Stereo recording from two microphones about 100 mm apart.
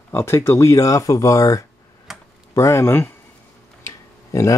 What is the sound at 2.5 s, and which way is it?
Speech, 30° left (ahead or behind).